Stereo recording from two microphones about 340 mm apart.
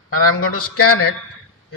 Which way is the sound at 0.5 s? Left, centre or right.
Left.